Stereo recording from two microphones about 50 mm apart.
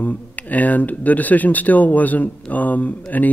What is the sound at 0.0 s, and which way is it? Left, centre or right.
Speech, left.